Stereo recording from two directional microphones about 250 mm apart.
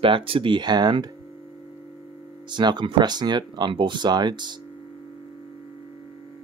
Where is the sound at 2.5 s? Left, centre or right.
Centre.